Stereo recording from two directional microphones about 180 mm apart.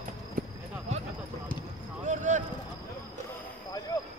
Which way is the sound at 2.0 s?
45° right (ahead or behind).